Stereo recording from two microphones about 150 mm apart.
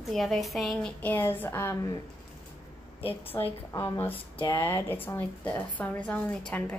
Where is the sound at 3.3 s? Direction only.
20° left (ahead or behind).